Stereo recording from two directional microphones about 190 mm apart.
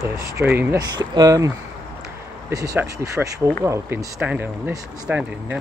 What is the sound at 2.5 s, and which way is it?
Speech, 20° right (ahead or behind).